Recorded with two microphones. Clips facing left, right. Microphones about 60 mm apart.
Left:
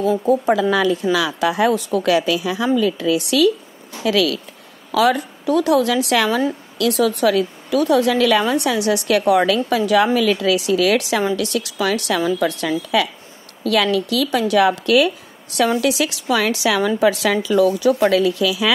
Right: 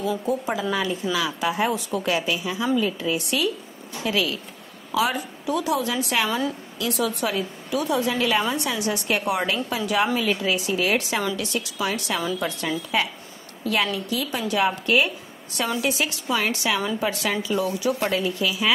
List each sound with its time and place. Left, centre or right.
0.0 s a woman's voice: left
0.5 s a woman's voice: left
4.9 s a woman's voice: left
10.1 s a woman's voice: left
18.1 s speech: left